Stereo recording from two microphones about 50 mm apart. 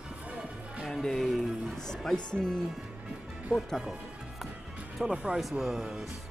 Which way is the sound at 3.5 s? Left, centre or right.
Left.